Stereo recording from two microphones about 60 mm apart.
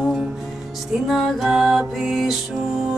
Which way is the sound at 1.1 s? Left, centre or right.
Centre.